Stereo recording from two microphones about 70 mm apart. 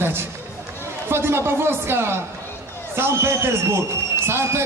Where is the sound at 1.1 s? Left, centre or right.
Right.